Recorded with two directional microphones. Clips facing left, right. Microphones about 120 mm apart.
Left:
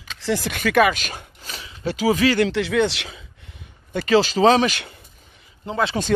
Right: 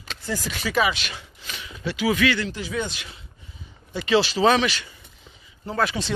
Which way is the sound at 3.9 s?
40° left (ahead or behind).